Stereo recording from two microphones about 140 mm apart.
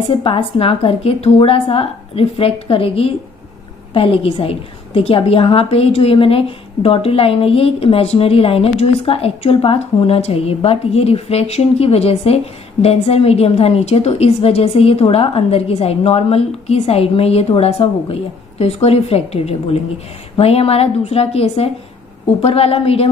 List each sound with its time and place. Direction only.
0.1 s a woman's voice: 40° left (ahead or behind)